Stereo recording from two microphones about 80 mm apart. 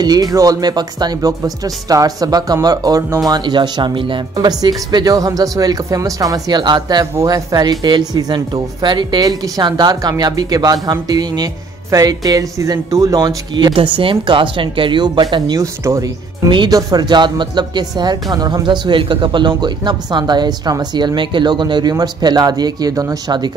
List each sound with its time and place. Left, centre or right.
0.0 s speech: right
3.3 s speech: right
4.5 s speech: right
7.2 s speech: right
13.6 s speech: right
15.3 s speech: right
15.6 s speech: right
16.4 s speech: right
16.7 s speech: right
21.9 s speech: right